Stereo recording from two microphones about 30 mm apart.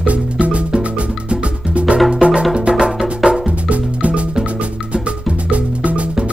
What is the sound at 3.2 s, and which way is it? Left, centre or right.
Music, right.